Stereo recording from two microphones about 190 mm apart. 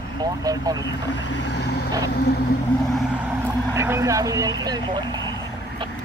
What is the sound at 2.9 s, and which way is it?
Vehicle, 10° right (ahead or behind).